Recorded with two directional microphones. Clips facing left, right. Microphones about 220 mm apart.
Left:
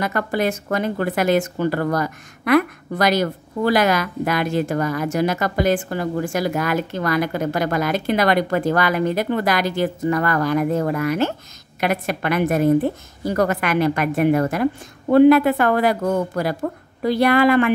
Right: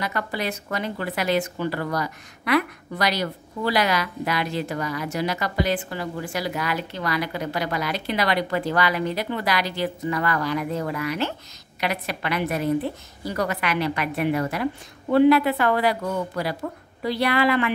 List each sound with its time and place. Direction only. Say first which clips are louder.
0.0 s speech: left 7 dB; 50° left (ahead or behind)